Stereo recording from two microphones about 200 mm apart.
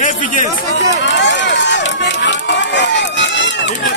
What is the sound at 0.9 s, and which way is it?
Run, 60° left (ahead or behind).